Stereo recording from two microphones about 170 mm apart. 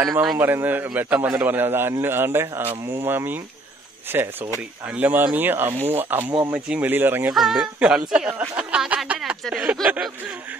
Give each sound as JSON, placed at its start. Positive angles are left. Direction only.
{"t": 0.0, "sound": "a man's voice", "side_deg": -15}